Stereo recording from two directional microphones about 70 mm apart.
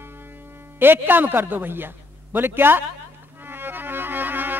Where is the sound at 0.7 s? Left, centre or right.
Right.